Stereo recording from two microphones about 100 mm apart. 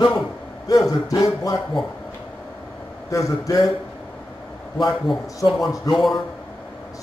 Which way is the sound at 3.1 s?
30° left (ahead or behind).